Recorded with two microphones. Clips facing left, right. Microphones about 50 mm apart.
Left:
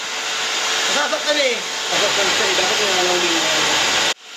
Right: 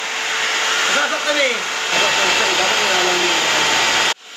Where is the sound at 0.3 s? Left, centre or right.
Right.